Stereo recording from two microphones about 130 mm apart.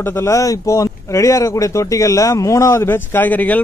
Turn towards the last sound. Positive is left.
turn(degrees=10)  # may be behind; listen again after turning